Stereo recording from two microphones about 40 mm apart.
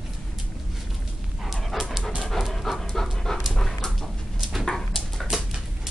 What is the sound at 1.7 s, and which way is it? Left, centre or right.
Dog, centre.